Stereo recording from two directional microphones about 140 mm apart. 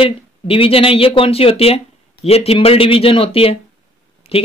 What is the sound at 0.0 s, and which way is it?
Speech, 40° left (ahead or behind).